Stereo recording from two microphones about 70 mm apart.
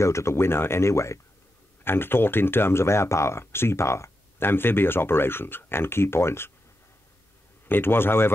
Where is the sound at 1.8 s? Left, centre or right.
Left.